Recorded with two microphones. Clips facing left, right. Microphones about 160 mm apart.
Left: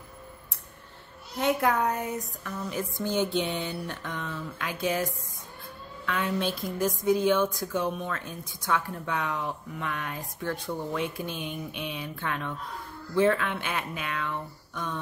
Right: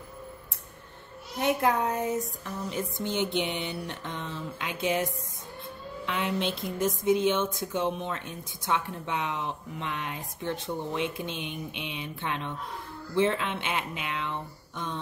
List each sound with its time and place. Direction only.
1.4 s a woman's voice: 20° right (ahead or behind)